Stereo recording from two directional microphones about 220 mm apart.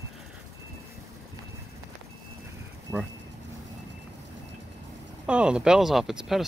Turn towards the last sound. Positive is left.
turn(degrees=0)  # may be behind; listen again after turning